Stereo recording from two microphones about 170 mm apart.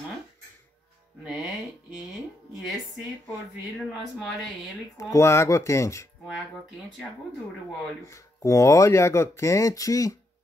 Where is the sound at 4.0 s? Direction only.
Centre (ahead or behind).